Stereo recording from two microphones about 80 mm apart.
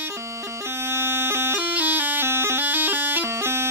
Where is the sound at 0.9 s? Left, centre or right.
Right.